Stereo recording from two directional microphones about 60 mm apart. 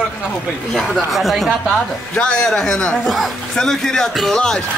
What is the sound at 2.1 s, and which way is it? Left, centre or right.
A man's voice, centre.